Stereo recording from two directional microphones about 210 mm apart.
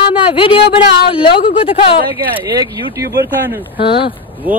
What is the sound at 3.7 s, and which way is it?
Speech, 25° left (ahead or behind).